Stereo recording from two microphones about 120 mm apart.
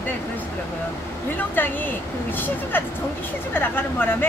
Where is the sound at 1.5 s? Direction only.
15° left (ahead or behind).